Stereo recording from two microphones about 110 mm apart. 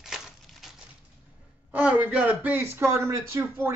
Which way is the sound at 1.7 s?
15° right (ahead or behind).